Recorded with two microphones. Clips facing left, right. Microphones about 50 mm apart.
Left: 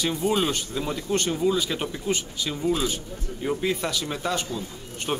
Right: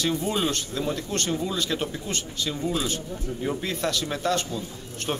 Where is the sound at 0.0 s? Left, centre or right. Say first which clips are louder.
Left 1 dB; centre.